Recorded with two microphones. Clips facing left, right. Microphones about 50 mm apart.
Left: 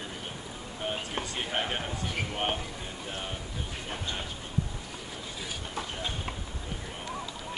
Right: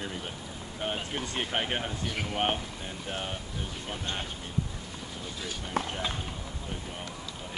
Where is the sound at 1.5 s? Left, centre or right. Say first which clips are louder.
Right 1 dB; centre.